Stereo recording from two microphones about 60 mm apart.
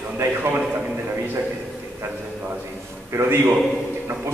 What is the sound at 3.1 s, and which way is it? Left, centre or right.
Speech, right.